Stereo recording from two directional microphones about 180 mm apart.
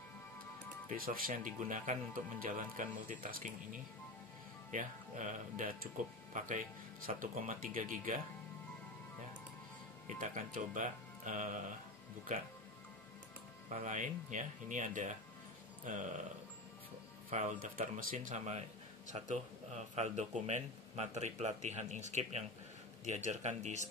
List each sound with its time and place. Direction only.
0.8 s speech: 50° right (ahead or behind)
10.0 s speech: 45° right (ahead or behind)
13.7 s speech: 40° right (ahead or behind)
17.3 s speech: 40° right (ahead or behind)